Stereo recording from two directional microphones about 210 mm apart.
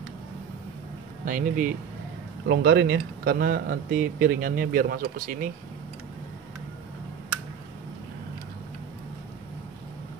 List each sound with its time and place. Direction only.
1.2 s speech: 40° right (ahead or behind)
2.4 s speech: 50° right (ahead or behind)